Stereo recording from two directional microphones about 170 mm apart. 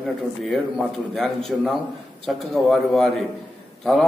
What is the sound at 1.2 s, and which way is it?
A man's voice, centre (ahead or behind).